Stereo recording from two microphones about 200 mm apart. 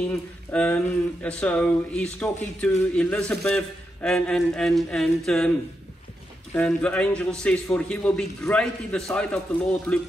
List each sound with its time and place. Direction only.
0.5 s speech: 5° left (ahead or behind)
6.5 s speech: 5° left (ahead or behind)
9.9 s music: 10° left (ahead or behind)